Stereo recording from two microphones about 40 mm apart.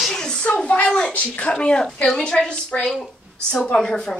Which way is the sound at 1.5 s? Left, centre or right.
Left.